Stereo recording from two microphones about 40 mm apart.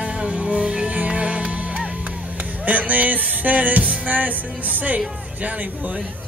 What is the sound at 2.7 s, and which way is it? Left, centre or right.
Music, right.